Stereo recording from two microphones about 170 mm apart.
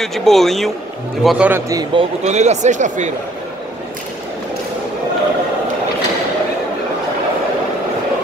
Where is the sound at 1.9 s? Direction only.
40° right (ahead or behind).